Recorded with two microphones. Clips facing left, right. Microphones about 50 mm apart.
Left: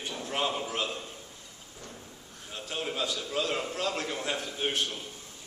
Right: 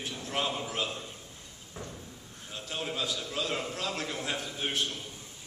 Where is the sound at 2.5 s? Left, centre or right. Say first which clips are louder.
Left 1 dB; centre.